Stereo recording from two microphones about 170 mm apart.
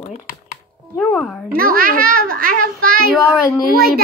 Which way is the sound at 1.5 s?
60° right (ahead or behind).